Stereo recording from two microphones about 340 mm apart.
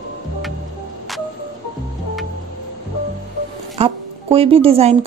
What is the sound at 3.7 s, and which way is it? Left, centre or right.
Music, centre.